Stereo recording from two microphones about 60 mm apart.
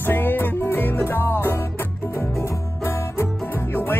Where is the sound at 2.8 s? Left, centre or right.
Left.